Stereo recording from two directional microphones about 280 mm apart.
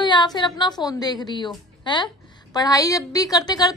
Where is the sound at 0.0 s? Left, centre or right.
Centre.